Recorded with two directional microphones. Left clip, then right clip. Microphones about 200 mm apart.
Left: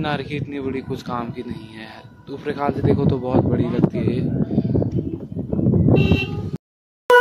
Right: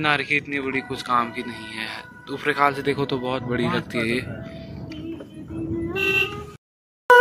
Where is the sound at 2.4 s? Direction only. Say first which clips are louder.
Right 3 dB; 25° left (ahead or behind).